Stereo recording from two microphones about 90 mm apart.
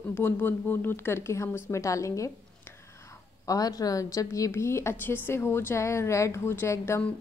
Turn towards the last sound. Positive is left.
turn(degrees=25)  # may be behind; listen again after turning